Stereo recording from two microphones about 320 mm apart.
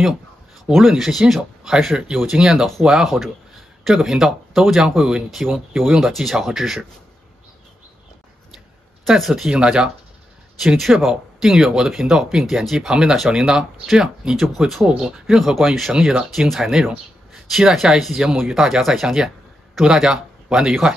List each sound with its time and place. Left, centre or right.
0.7 s speech: centre
9.0 s speech: centre